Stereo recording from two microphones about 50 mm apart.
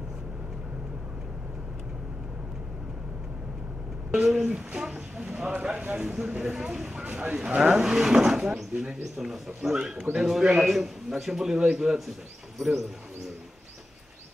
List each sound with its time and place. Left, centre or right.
4.1 s a man's voice: centre